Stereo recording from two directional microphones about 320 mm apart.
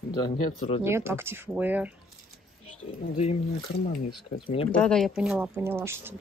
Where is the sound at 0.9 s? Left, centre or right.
Centre.